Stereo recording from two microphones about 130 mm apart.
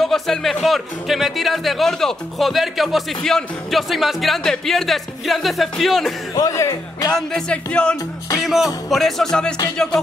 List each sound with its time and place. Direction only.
0.0 s speech: 5° left (ahead or behind)
6.3 s speech: 25° left (ahead or behind)
7.2 s music: 5° left (ahead or behind)
8.5 s speech: centre (ahead or behind)